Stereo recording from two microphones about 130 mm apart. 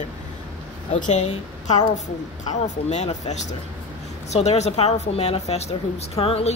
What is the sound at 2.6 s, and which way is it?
Speech, 60° left (ahead or behind).